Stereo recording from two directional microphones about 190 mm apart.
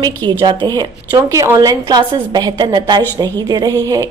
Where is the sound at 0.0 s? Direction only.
20° right (ahead or behind).